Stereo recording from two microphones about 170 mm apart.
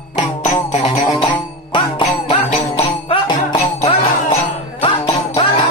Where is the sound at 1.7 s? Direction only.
30° left (ahead or behind).